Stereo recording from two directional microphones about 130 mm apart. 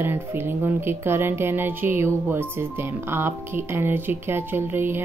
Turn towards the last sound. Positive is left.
turn(degrees=-15)  # may be behind; listen again after turning